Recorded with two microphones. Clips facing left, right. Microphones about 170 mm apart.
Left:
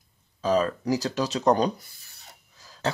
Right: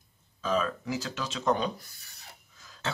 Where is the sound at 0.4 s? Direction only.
40° left (ahead or behind).